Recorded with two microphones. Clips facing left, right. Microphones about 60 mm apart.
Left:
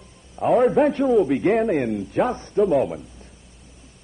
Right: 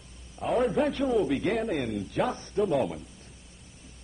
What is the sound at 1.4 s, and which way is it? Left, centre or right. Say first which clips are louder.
Speech: left 9 dB; left.